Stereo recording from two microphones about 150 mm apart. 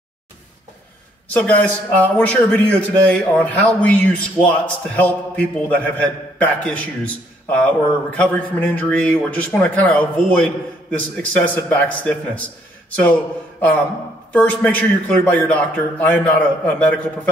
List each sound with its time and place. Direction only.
1.3 s a man's voice: 10° left (ahead or behind)